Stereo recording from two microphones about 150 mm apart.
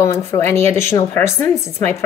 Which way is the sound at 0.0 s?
20° left (ahead or behind).